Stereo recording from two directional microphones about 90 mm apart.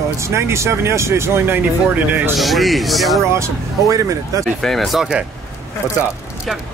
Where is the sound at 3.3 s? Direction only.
35° right (ahead or behind).